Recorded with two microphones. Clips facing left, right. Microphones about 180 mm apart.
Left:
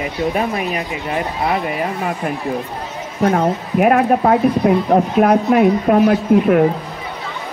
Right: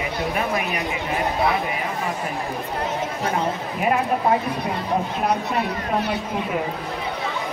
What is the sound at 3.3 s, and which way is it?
Speech, 70° left (ahead or behind).